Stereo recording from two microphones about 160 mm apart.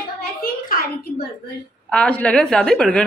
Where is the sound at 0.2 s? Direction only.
65° left (ahead or behind).